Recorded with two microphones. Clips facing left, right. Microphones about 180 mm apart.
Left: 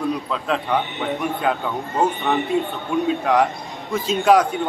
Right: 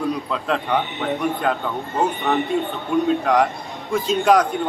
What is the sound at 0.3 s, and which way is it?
A man's voice, centre (ahead or behind).